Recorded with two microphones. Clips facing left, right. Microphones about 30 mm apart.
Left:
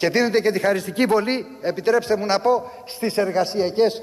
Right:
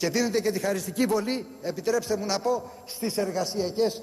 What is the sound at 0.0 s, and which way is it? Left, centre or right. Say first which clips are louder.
A man's voice: left 7 dB; left.